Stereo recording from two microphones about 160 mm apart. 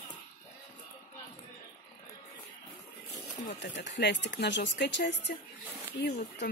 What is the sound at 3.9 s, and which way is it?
Speech, 90° left.